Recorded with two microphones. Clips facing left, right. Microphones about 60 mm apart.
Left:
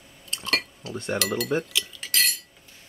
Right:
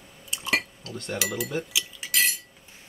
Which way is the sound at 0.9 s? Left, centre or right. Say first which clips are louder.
Left 6 dB; centre.